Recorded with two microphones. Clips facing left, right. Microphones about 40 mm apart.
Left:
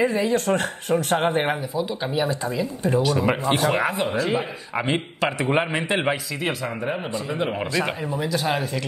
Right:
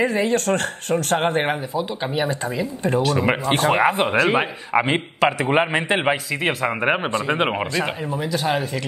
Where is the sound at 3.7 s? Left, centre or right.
Right.